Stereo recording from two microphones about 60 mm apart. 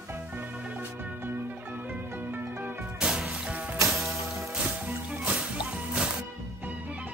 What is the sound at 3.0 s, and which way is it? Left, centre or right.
Music, centre.